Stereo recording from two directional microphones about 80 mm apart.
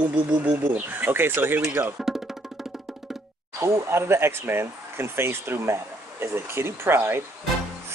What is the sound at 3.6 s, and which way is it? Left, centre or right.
Speech, right.